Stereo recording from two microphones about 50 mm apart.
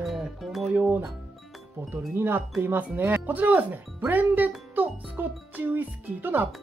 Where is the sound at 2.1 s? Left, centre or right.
Right.